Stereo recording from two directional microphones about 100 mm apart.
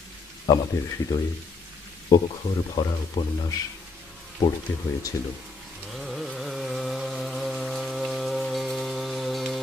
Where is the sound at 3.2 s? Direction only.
55° left (ahead or behind).